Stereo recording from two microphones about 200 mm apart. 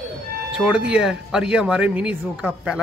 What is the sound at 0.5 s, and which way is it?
Speech, 5° right (ahead or behind).